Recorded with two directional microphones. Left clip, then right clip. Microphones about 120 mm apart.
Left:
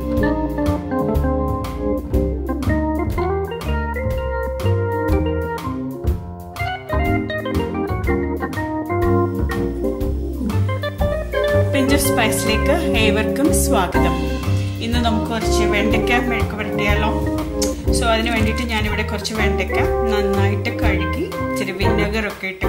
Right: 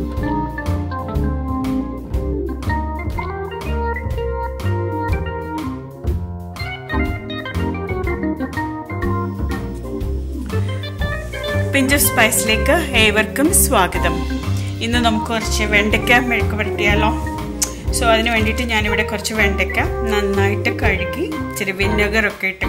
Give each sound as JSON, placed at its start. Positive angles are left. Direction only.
{"t": 11.7, "sound": "speech", "side_deg": -20}